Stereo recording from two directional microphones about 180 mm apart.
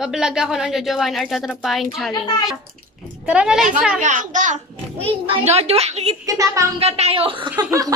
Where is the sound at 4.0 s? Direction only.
45° right (ahead or behind).